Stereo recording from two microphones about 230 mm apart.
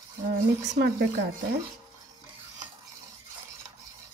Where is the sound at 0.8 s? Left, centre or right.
Right.